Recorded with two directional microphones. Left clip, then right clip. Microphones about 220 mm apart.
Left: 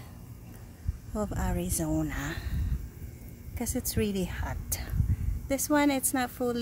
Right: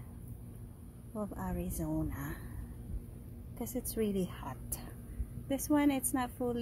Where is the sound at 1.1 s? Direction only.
30° left (ahead or behind).